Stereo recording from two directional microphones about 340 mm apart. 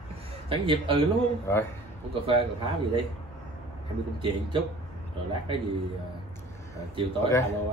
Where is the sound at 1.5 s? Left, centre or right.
Centre.